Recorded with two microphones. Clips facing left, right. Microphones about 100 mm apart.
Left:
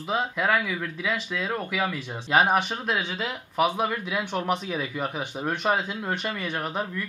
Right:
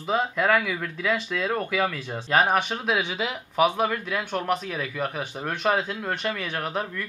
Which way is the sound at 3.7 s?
5° left (ahead or behind).